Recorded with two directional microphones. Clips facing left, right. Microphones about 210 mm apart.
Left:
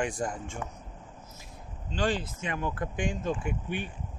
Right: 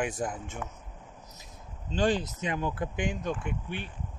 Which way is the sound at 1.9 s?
20° right (ahead or behind).